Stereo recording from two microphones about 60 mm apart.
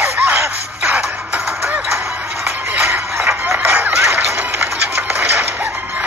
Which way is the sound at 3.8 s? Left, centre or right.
Right.